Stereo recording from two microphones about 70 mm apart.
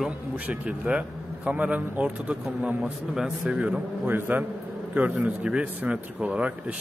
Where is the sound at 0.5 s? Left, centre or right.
Centre.